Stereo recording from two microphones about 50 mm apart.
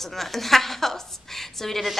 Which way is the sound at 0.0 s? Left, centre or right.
Centre.